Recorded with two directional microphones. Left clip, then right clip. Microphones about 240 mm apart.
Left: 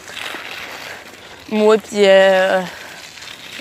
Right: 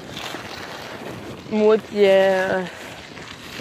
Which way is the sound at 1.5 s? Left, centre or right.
Left.